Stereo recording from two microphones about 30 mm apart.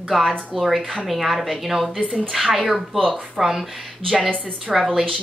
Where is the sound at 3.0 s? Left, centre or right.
Centre.